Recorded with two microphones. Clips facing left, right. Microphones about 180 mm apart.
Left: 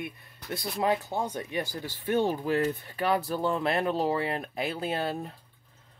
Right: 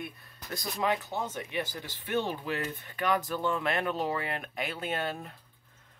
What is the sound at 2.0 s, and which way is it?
Speech, 45° left (ahead or behind).